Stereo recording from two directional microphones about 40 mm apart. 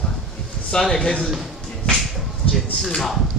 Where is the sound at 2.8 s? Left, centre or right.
Centre.